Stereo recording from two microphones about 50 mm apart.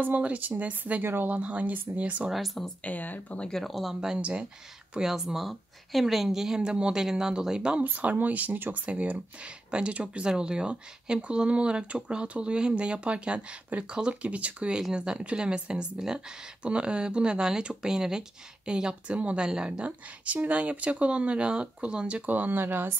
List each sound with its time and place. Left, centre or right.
0.2 s speech: right
1.0 s speech: right
1.3 s speech: right
2.3 s speech: centre
2.8 s speech: left
3.3 s speech: centre
3.7 s speech: centre
4.2 s speech: right
4.9 s speech: centre
7.8 s speech: right
14.8 s speech: centre
16.6 s speech: right
20.4 s speech: right
22.3 s speech: right